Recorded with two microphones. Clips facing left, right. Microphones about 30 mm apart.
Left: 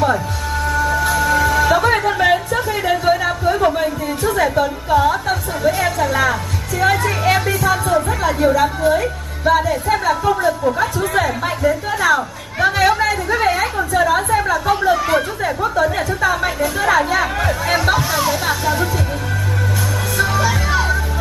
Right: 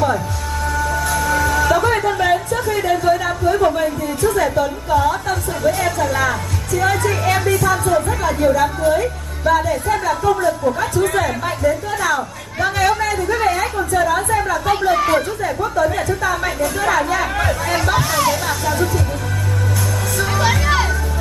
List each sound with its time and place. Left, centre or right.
0.7 s music: centre
3.5 s a sound: centre
4.2 s speech: centre
4.6 s a woman's voice: centre
15.6 s a woman's voice: centre
16.0 s speech: centre